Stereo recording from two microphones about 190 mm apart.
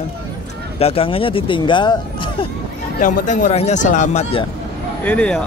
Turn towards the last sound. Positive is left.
turn(degrees=5)  # may be behind; listen again after turning